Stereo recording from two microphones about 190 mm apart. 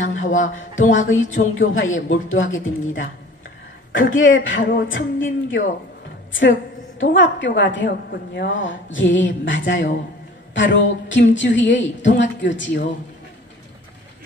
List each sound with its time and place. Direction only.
0.0 s a sound: 90° left
0.8 s speech: 90° left
4.6 s a woman's voice: 75° left (ahead or behind)
7.2 s a woman's voice: 75° left (ahead or behind)